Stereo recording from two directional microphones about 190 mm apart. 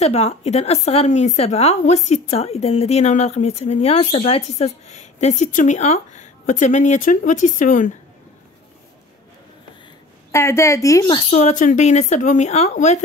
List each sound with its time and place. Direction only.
0.0 s a woman's voice: 35° left (ahead or behind)
10.3 s a woman's voice: 15° left (ahead or behind)
11.2 s a woman's voice: 35° left (ahead or behind)